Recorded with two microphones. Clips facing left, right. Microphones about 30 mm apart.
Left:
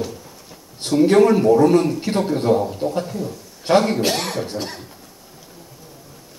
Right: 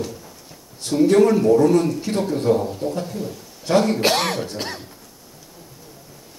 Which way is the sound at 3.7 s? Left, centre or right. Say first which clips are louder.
Left 2 dB; left.